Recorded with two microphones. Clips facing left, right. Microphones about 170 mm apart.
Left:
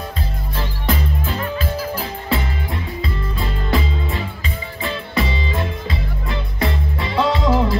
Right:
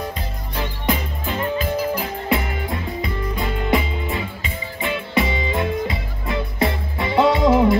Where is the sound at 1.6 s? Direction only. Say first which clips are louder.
Right 2 dB; 15° right (ahead or behind).